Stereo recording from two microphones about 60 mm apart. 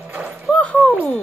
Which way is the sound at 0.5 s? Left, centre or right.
Centre.